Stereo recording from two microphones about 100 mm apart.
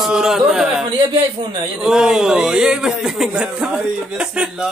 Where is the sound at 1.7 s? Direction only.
5° right (ahead or behind).